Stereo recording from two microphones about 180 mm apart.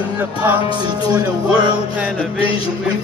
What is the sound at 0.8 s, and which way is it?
Music, 25° right (ahead or behind).